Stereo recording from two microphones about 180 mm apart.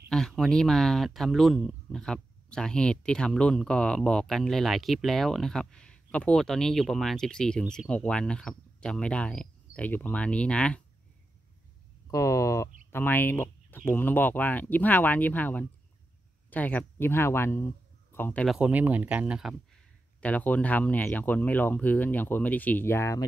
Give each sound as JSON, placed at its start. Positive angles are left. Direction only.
{"t": 0.1, "sound": "speech", "side_deg": 5}
{"t": 12.1, "sound": "speech", "side_deg": 15}
{"t": 18.6, "sound": "speech", "side_deg": -10}
{"t": 20.2, "sound": "speech", "side_deg": 10}